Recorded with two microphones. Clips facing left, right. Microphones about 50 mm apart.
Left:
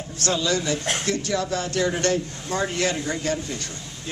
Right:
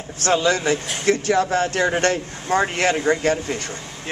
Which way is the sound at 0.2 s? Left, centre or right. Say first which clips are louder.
Right 5 dB; right.